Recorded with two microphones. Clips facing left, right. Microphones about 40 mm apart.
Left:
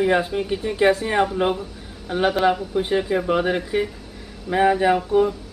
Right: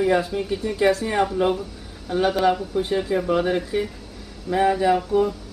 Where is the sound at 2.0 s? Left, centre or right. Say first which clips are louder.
Left 1 dB; left.